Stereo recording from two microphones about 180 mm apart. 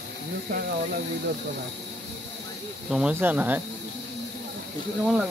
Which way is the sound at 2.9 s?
5° right (ahead or behind).